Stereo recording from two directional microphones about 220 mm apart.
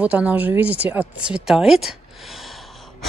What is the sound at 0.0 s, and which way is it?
Speech, 5° right (ahead or behind).